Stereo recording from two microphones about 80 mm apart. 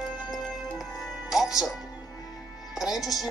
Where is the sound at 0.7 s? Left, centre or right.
Centre.